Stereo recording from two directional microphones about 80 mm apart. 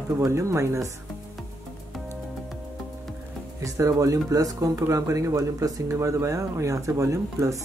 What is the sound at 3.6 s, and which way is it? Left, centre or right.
Speech, right.